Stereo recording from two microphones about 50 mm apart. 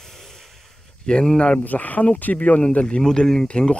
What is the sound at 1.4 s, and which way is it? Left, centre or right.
Speech, left.